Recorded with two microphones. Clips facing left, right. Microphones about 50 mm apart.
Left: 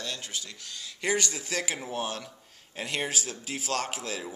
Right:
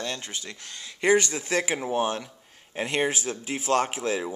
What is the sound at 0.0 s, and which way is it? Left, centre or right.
Speech, right.